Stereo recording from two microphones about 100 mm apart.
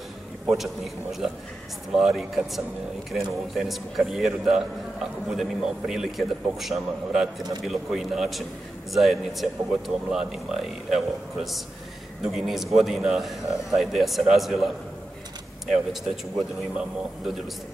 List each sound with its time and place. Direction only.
2.0 s speech: 5° right (ahead or behind)